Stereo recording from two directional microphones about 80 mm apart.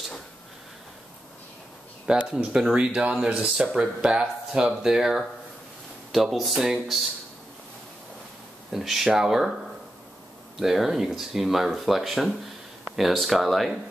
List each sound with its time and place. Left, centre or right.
2.0 s speech: centre
8.7 s speech: centre
10.6 s speech: centre